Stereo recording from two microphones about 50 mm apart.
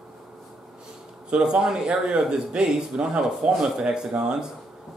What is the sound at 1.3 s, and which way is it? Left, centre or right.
A man's voice, centre.